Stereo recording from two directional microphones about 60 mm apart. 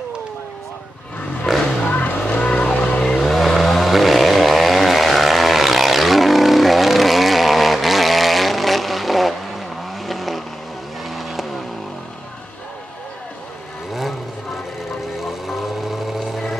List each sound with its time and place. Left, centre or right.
1.4 s a sound: centre
1.9 s vehicle: left; by 11.6 s centre
13.9 s vehicle: centre